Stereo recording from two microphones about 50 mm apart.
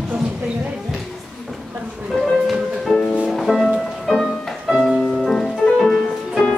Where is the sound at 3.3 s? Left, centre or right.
Centre.